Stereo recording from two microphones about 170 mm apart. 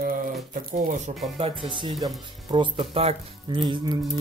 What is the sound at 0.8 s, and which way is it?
Speech, 45° right (ahead or behind).